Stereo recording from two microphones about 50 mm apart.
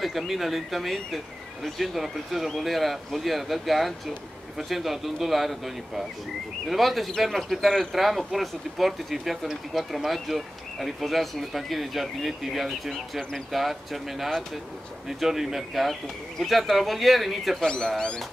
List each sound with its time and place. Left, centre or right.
0.0 s speech: centre
17.6 s speech: centre